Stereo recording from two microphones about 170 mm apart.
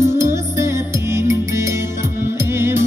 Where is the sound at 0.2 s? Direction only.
15° right (ahead or behind).